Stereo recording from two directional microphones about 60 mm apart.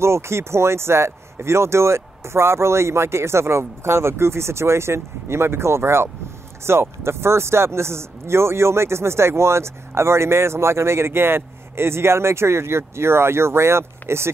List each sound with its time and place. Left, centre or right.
0.0 s speech: right